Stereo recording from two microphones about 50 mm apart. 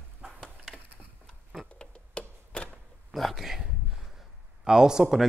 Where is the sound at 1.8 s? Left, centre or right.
Left.